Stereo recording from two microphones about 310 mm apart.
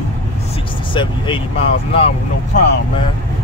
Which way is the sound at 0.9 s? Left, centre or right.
Centre.